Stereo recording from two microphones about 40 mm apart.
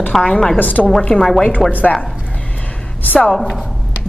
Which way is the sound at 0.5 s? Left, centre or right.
Left.